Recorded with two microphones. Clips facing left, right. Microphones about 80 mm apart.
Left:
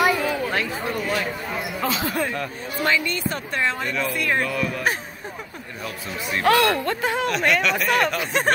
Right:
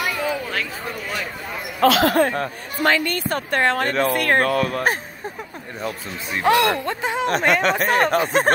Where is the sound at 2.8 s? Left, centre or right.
Right.